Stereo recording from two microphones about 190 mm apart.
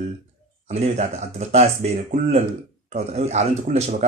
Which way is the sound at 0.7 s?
35° right (ahead or behind).